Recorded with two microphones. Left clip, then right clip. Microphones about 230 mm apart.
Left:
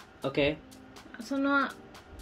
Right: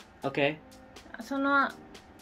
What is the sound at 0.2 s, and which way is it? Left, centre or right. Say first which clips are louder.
Speech: even; centre.